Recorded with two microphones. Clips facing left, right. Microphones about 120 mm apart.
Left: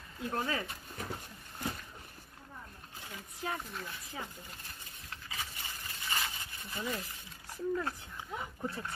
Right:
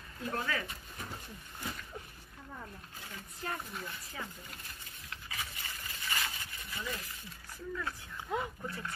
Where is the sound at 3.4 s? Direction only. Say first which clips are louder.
Left 2 dB; 5° left (ahead or behind).